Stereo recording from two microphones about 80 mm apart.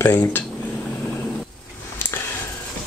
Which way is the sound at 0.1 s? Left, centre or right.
Left.